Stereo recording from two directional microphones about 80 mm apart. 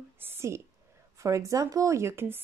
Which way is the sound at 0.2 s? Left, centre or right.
Right.